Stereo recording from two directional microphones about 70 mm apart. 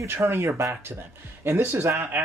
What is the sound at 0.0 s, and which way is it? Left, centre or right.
Speech, right.